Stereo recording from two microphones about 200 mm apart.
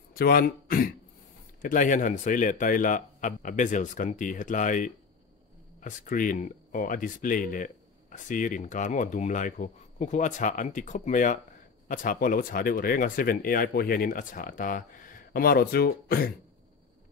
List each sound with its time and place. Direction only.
0.1 s speech: 50° left (ahead or behind)